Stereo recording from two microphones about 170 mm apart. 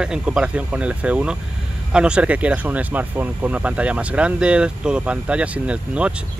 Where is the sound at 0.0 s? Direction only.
5° right (ahead or behind).